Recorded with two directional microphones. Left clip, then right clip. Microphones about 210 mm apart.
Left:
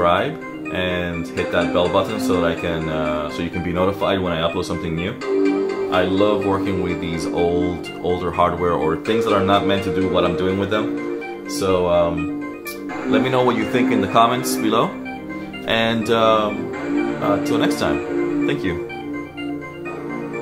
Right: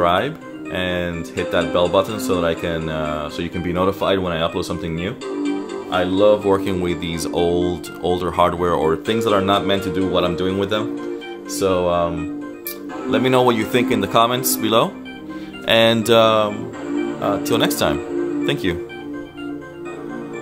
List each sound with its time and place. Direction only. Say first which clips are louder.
0.0 s music: even; 50° right (ahead or behind)
0.7 s speech: even; 50° right (ahead or behind)
13.1 s speech: right 2 dB; 50° right (ahead or behind)